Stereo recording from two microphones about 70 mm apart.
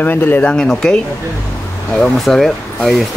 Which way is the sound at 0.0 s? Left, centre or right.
Left.